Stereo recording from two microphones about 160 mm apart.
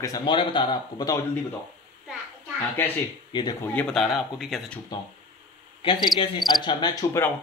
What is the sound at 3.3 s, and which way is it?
Speech, 25° left (ahead or behind).